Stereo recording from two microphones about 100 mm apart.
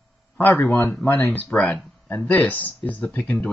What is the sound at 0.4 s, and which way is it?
Speech, 20° left (ahead or behind).